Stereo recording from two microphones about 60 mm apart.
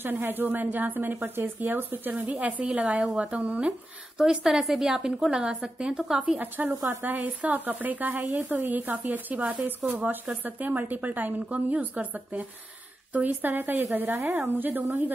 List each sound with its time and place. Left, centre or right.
0.0 s speech: right
4.2 s a woman's voice: centre
6.3 s speech: right